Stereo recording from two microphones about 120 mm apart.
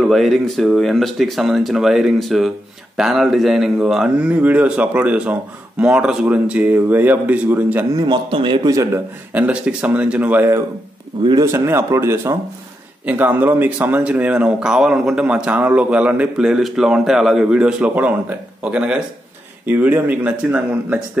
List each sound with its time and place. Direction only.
0.0 s speech: centre (ahead or behind)
7.9 s a man's voice: 40° right (ahead or behind)
8.6 s speech: 25° right (ahead or behind)
9.3 s speech: 10° right (ahead or behind)